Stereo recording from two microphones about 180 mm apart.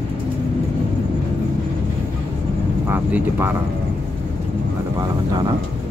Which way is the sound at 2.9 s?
10° right (ahead or behind).